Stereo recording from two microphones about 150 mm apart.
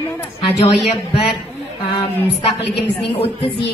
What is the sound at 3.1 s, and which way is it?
Speech, 40° left (ahead or behind).